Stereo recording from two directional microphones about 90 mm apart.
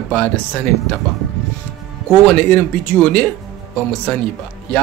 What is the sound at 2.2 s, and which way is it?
Speech, 15° left (ahead or behind).